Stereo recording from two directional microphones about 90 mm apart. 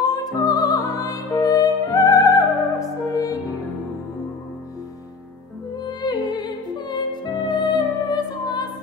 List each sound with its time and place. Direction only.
0.0 s music: 45° left (ahead or behind)
5.8 s music: 50° left (ahead or behind)